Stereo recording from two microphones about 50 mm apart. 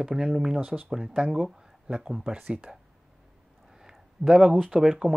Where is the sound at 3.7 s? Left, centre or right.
Centre.